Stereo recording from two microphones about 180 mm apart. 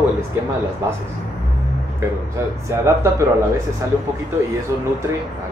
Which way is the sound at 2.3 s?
15° right (ahead or behind).